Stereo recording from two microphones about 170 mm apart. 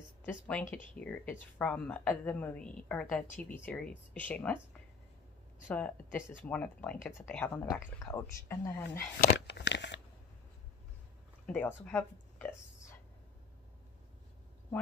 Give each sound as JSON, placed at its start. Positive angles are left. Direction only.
{"t": 0.2, "sound": "speech", "side_deg": 10}
{"t": 5.7, "sound": "speech", "side_deg": 10}
{"t": 9.5, "sound": "a sound", "side_deg": 90}
{"t": 11.4, "sound": "speech", "side_deg": 10}